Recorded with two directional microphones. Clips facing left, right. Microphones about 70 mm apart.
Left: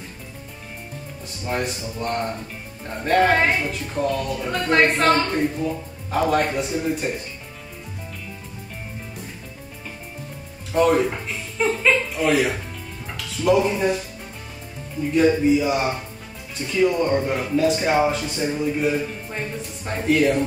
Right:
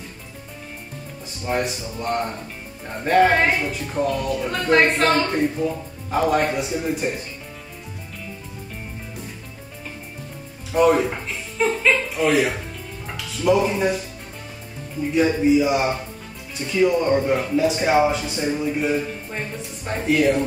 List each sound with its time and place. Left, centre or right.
1.2 s speech: centre
10.7 s speech: centre
13.0 s music: centre
15.1 s speech: centre